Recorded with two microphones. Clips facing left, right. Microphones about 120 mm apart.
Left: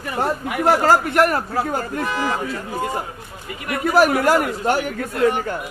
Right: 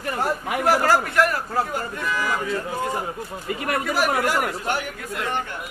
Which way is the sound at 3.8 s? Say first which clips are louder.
Left 9 dB; 45° left (ahead or behind).